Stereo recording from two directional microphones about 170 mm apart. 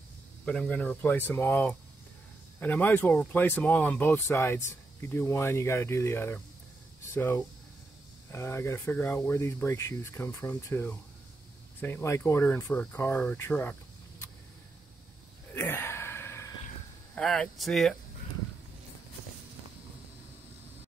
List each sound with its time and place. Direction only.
0.5 s speech: 5° left (ahead or behind)
15.5 s a sound: 15° left (ahead or behind)
17.1 s speech: 5° left (ahead or behind)